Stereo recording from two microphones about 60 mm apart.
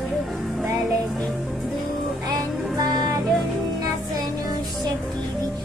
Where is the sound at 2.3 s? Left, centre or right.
Right.